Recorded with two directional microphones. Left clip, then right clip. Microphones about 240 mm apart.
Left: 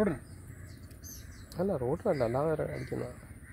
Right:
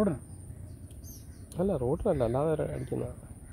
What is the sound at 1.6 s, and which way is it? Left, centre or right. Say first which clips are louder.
Speech: right 2 dB; centre.